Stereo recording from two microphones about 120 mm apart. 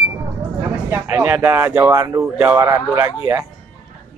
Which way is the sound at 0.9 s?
15° right (ahead or behind).